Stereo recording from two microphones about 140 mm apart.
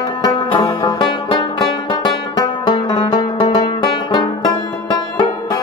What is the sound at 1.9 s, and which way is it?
Music, 35° left (ahead or behind).